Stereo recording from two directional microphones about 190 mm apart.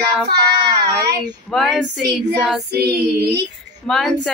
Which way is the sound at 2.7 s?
55° right (ahead or behind).